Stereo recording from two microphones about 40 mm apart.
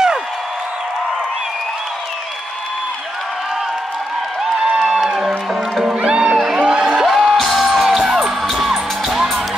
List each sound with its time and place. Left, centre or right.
4.6 s a sound: right
5.0 s music: centre
6.0 s music: right
7.1 s music: centre